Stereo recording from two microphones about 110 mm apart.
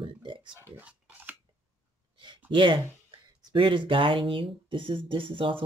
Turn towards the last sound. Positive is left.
turn(degrees=-50)  # may be behind; listen again after turning